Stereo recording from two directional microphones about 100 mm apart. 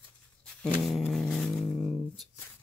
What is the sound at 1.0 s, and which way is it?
Vehicle, 5° left (ahead or behind).